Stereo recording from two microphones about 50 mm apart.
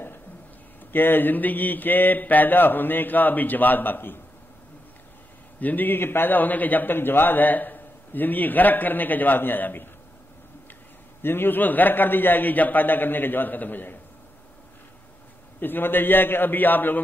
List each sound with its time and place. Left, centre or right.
0.9 s a man's voice: left
5.6 s a man's voice: left
11.2 s a man's voice: left
15.6 s a man's voice: left